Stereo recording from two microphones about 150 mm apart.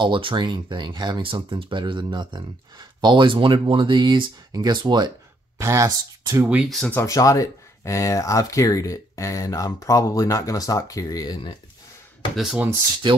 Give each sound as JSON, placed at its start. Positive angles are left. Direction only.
{"t": 0.0, "sound": "speech", "side_deg": -35}
{"t": 6.5, "sound": "speech", "side_deg": 0}
{"t": 6.9, "sound": "speech", "side_deg": 20}
{"t": 12.4, "sound": "speech", "side_deg": 0}